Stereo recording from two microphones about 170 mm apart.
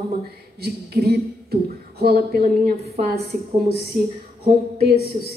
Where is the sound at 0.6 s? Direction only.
65° right (ahead or behind).